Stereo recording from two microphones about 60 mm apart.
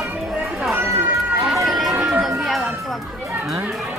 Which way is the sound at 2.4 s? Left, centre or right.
Centre.